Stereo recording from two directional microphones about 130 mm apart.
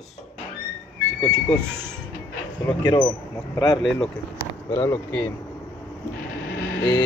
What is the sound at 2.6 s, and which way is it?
Speech, 30° left (ahead or behind).